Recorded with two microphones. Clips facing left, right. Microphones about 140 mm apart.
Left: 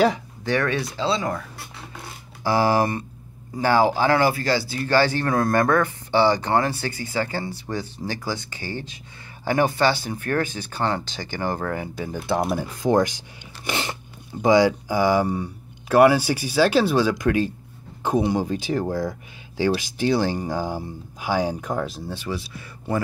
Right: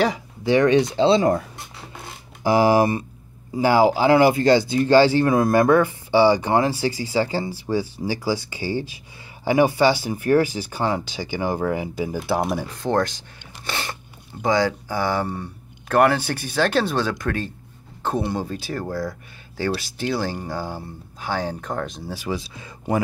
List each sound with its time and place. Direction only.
0.4 s speech: 15° right (ahead or behind)
2.4 s speech: 15° right (ahead or behind)
12.4 s speech: centre (ahead or behind)
12.8 s speech: 15° left (ahead or behind)
13.7 s a sound: 20° left (ahead or behind)
14.4 s speech: 15° left (ahead or behind)
22.1 s speech: 15° right (ahead or behind)